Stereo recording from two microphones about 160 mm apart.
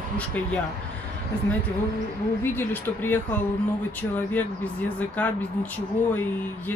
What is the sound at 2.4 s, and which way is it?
Speech, 15° left (ahead or behind).